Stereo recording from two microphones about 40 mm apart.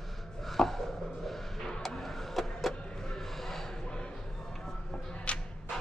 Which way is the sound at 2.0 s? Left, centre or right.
Centre.